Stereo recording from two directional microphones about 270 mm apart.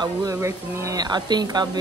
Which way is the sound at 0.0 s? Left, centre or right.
Centre.